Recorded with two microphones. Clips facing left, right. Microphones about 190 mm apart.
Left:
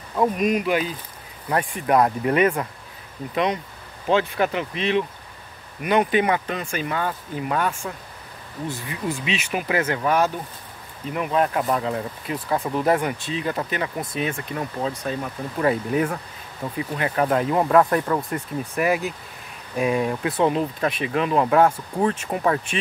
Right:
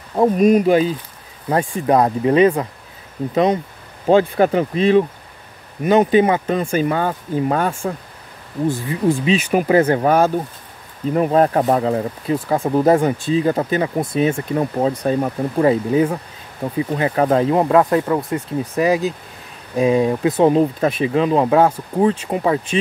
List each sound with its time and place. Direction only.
0.1 s speech: 35° right (ahead or behind)
4.0 s speech: 40° right (ahead or behind)
8.8 s speech: 35° right (ahead or behind)
14.6 s speech: 40° right (ahead or behind)
15.5 s speech: 25° right (ahead or behind)
20.5 s speech: 35° right (ahead or behind)